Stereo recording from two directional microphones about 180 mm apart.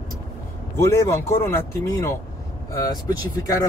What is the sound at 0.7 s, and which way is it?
Speech, 15° left (ahead or behind).